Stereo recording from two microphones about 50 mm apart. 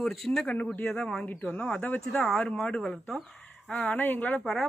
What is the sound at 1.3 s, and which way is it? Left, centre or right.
Speech, left.